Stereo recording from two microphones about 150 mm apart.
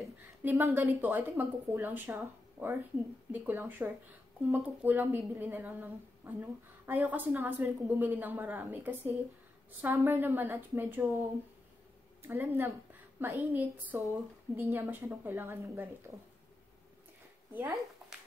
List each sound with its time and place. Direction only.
0.4 s a woman's voice: 15° right (ahead or behind)
12.2 s a woman's voice: 15° right (ahead or behind)